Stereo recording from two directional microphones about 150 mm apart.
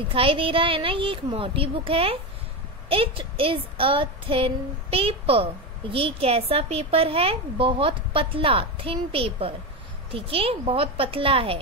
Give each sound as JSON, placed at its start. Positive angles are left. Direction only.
{"t": 0.1, "sound": "a child's voice", "side_deg": -35}